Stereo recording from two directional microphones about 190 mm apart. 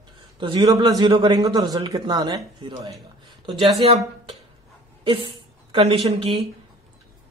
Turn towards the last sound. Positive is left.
turn(degrees=-30)  # may be behind; listen again after turning